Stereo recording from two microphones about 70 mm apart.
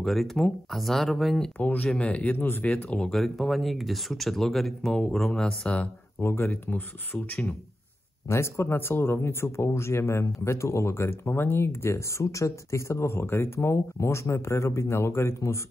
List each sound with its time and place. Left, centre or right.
0.0 s speech: centre
1.6 s speech: left
3.1 s speech: centre
6.2 s speech: left
8.3 s speech: left